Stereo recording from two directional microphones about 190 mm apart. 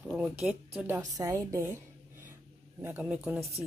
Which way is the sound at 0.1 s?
5° right (ahead or behind).